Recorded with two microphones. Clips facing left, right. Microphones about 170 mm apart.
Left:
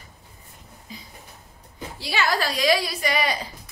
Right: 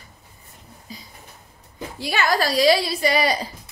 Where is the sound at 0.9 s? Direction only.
35° right (ahead or behind).